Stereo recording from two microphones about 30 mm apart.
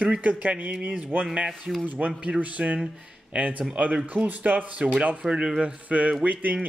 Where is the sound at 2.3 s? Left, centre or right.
Right.